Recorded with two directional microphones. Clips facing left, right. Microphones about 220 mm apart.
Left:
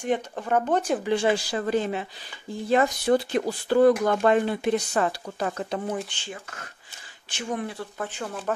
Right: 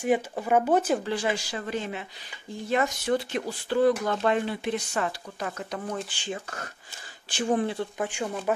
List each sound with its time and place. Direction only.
0.0 s speech: 10° right (ahead or behind)
1.0 s speech: 25° left (ahead or behind)
5.9 s speech: centre (ahead or behind)
7.2 s speech: 35° right (ahead or behind)
8.0 s speech: 15° right (ahead or behind)